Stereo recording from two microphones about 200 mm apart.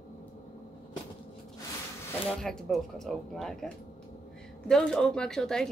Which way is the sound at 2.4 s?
Centre (ahead or behind).